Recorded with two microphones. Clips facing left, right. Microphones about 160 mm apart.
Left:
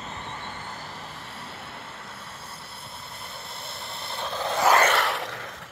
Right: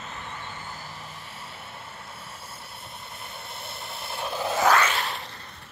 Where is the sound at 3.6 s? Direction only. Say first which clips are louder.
Even; 5° right (ahead or behind).